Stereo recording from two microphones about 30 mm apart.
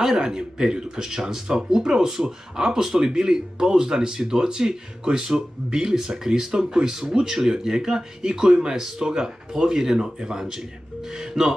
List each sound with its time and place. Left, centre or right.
0.1 s speech: right